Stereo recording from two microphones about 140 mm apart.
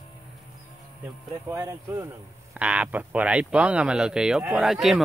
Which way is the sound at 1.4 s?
20° right (ahead or behind).